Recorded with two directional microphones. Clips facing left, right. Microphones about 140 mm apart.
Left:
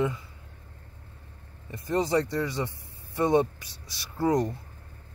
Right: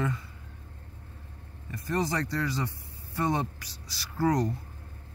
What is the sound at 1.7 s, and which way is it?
Speech, 25° left (ahead or behind).